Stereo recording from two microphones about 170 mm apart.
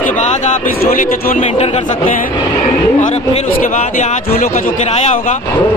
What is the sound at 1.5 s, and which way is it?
Speech, 35° left (ahead or behind).